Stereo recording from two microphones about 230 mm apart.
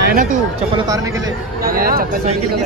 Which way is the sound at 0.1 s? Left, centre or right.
Right.